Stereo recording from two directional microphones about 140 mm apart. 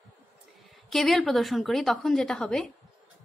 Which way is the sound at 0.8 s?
Centre (ahead or behind).